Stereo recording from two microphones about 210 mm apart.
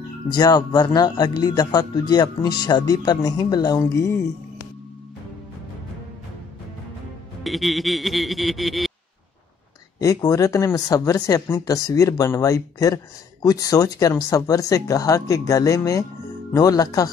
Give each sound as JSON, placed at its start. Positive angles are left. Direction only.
{"t": 0.3, "sound": "speech", "side_deg": 20}
{"t": 7.4, "sound": "music", "side_deg": 0}
{"t": 9.9, "sound": "speech", "side_deg": 15}